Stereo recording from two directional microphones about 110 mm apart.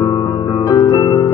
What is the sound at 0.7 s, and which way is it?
Harp, 35° left (ahead or behind).